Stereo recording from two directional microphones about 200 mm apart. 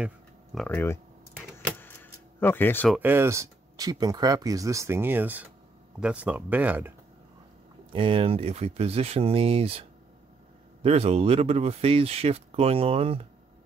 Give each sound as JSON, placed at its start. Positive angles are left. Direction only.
{"t": 0.6, "sound": "speech", "side_deg": 10}
{"t": 1.8, "sound": "keys jangling", "side_deg": 10}
{"t": 2.9, "sound": "speech", "side_deg": -10}
{"t": 7.9, "sound": "speech", "side_deg": -25}